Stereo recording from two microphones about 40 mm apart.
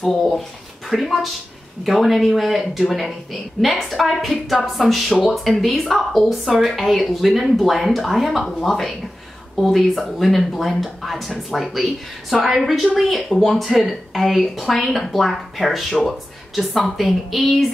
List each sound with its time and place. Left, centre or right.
0.1 s speech: centre